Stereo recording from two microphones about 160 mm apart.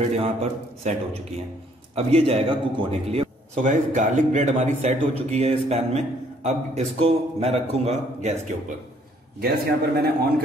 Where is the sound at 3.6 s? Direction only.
50° right (ahead or behind).